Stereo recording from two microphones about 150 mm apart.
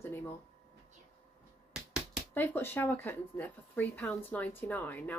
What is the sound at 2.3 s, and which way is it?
A woman's voice, 15° left (ahead or behind).